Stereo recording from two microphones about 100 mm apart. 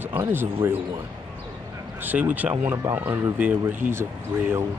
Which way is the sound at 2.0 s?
15° right (ahead or behind).